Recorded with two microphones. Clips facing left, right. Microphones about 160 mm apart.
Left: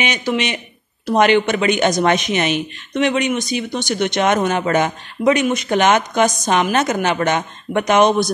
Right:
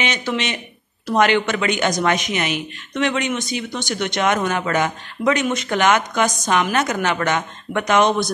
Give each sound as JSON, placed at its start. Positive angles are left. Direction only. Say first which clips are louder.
{"t": 0.0, "sound": "a man's voice", "louder": "left 3 dB", "side_deg": 15}